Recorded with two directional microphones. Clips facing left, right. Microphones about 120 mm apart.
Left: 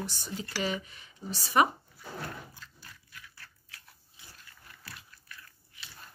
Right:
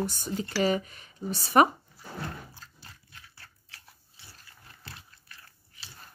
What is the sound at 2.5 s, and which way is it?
Dog, 30° right (ahead or behind).